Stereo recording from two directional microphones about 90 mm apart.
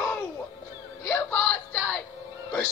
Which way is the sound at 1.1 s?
15° left (ahead or behind).